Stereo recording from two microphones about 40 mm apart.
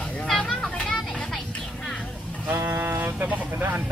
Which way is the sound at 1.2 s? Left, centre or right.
Centre.